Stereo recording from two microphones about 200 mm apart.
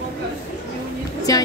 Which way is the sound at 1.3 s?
15° left (ahead or behind).